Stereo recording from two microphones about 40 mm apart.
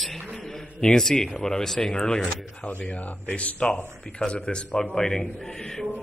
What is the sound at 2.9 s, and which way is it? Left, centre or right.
Speech, left.